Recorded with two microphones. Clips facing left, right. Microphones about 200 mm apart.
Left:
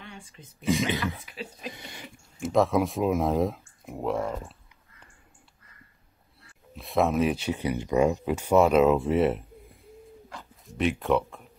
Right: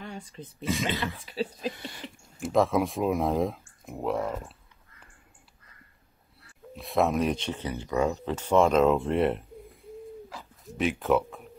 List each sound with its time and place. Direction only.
0.0 s speech: 40° right (ahead or behind)
0.7 s speech: 15° left (ahead or behind)
1.2 s speech: 30° right (ahead or behind)
2.4 s speech: centre (ahead or behind)
6.7 s speech: centre (ahead or behind)